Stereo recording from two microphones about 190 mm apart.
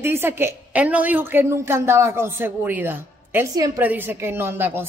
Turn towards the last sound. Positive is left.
turn(degrees=-10)  # may be behind; listen again after turning